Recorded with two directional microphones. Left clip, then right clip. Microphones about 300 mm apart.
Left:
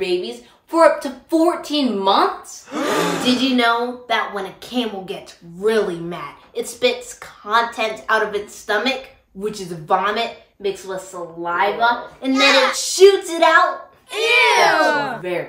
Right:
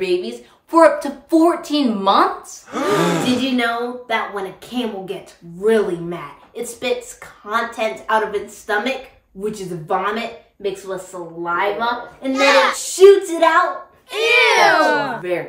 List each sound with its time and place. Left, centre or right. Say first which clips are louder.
0.0 s a woman's voice: right 1 dB; centre